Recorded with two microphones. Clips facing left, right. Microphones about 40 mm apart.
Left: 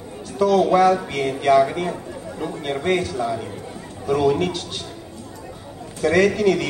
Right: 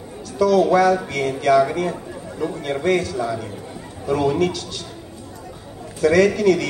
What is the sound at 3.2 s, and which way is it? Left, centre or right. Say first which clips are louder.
Speech: even; centre.